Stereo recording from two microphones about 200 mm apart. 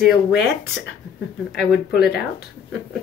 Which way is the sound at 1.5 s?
Centre (ahead or behind).